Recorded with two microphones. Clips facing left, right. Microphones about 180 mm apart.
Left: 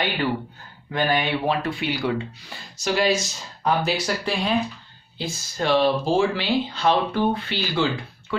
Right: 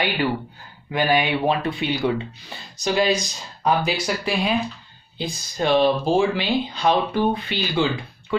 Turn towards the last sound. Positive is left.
turn(degrees=-15)  # may be behind; listen again after turning